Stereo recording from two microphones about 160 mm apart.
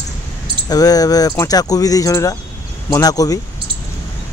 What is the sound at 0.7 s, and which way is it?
Speech, 25° left (ahead or behind).